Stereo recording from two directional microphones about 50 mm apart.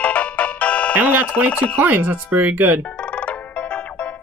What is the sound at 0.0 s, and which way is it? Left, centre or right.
Music, left.